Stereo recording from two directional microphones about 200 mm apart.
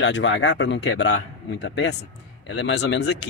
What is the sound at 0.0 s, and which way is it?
A man's voice, 65° left (ahead or behind).